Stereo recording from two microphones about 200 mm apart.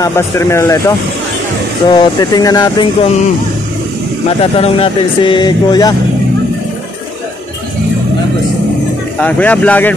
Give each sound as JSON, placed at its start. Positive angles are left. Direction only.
{"t": 0.0, "sound": "speech", "side_deg": 15}
{"t": 4.4, "sound": "speech", "side_deg": 30}
{"t": 9.2, "sound": "speech", "side_deg": 5}